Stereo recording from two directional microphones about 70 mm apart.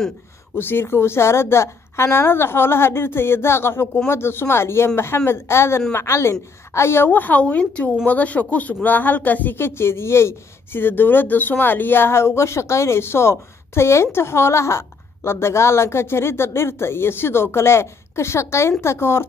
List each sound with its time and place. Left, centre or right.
0.6 s a woman's voice: left